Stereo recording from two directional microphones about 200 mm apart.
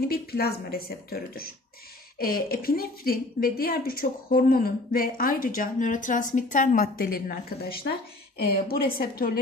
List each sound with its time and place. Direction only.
0.1 s a woman's voice: 50° left (ahead or behind)